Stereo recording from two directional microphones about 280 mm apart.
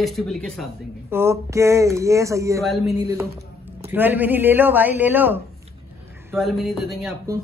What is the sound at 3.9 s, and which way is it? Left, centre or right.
Speech, centre.